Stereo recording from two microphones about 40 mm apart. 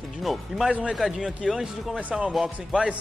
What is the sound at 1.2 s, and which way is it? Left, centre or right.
Speech, centre.